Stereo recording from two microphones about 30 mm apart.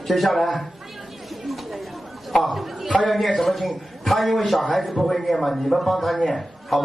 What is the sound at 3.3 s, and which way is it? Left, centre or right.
A man's voice, centre.